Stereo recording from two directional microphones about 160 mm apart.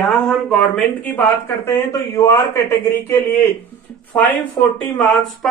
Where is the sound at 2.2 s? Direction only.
15° left (ahead or behind).